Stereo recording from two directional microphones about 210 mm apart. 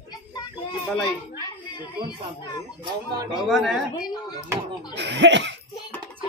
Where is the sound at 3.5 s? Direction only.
Centre (ahead or behind).